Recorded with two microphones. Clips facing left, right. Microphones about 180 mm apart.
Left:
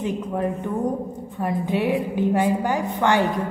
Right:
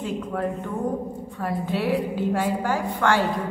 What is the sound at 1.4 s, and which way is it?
A woman's voice, 20° left (ahead or behind).